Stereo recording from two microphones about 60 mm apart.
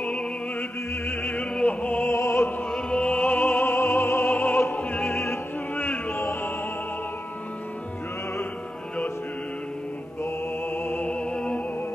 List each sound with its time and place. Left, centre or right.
0.0 s opera: left
2.0 s opera: left
2.7 s opera: centre; by 4.3 s left
4.3 s opera: left
5.2 s opera: left
10.2 s music: left
11.1 s music: centre